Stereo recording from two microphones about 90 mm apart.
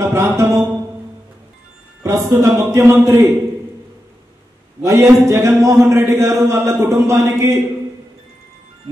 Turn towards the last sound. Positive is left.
turn(degrees=-30)  # may be behind; listen again after turning